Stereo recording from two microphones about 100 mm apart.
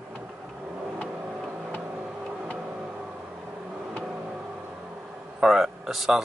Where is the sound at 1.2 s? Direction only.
10° right (ahead or behind).